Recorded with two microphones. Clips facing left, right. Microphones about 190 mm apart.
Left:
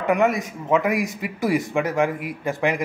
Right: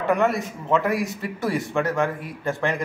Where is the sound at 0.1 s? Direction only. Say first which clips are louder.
Left 2 dB; 10° left (ahead or behind).